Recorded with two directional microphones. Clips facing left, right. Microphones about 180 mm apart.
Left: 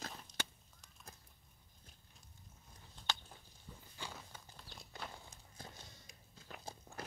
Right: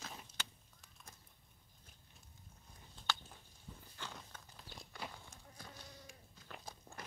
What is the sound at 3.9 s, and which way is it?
Walk, 10° left (ahead or behind).